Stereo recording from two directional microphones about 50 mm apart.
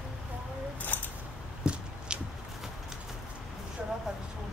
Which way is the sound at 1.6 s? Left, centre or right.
Centre.